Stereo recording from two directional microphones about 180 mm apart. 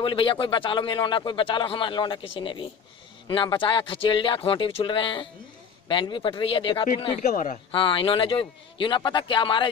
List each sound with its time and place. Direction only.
0.0 s speech: 30° left (ahead or behind)